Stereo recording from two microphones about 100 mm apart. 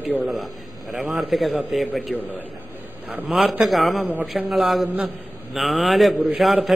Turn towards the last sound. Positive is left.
turn(degrees=0)  # may be behind; listen again after turning